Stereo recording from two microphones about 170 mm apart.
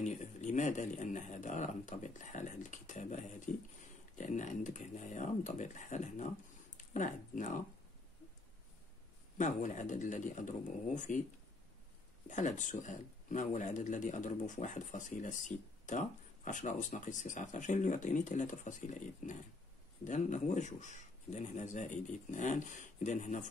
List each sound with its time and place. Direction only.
0.0 s speech: 45° left (ahead or behind)
9.4 s speech: 45° left (ahead or behind)
12.3 s speech: 45° left (ahead or behind)